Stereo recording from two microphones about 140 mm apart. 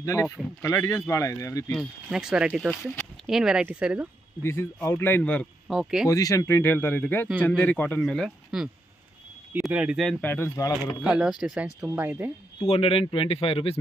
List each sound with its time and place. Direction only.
0.0 s speech: 25° left (ahead or behind)
2.0 s speech: 5° right (ahead or behind)
4.4 s speech: 20° left (ahead or behind)
5.7 s speech: 5° right (ahead or behind)
6.0 s speech: 25° left (ahead or behind); by 10.1 s 5° right (ahead or behind)
10.2 s speech: 20° left (ahead or behind)
11.0 s speech: 5° right (ahead or behind)
12.6 s speech: 45° left (ahead or behind)